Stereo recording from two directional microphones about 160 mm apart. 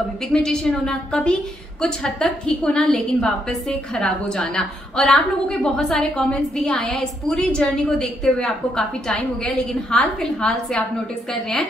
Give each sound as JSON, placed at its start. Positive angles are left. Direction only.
{"t": 0.3, "sound": "a woman's voice", "side_deg": 5}